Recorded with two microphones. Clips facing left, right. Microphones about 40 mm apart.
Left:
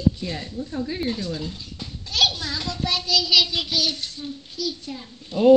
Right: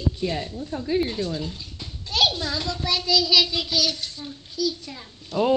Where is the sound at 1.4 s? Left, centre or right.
Right.